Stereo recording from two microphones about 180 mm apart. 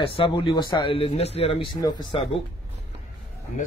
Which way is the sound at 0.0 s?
30° left (ahead or behind).